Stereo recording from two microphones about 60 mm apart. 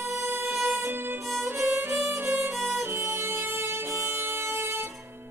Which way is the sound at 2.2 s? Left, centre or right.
Right.